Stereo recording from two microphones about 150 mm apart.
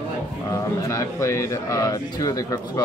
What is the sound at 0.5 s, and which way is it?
Speech, 20° left (ahead or behind).